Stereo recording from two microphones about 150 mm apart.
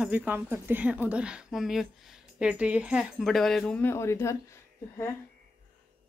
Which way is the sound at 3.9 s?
20° left (ahead or behind).